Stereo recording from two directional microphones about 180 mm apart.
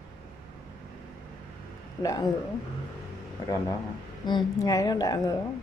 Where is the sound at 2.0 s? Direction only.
20° left (ahead or behind).